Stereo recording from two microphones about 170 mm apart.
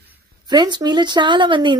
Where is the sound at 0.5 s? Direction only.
25° right (ahead or behind).